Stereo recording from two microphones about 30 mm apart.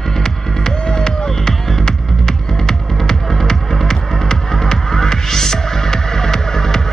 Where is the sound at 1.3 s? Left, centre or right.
Centre.